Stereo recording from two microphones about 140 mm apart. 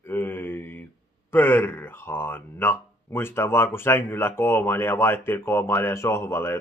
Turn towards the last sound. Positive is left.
turn(degrees=20)  # may be behind; listen again after turning